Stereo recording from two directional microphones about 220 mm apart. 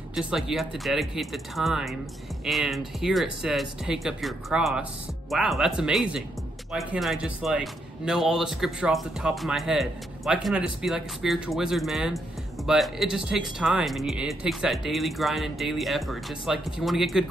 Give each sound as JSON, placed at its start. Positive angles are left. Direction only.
{"t": 0.1, "sound": "speech", "side_deg": 0}